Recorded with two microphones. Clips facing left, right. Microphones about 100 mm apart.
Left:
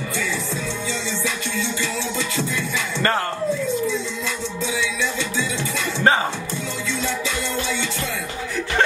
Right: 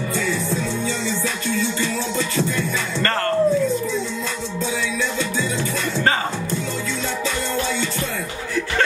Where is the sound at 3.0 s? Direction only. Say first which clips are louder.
Left 1 dB; 10° left (ahead or behind).